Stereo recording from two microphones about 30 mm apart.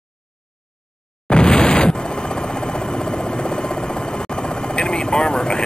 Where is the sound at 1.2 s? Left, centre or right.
Left.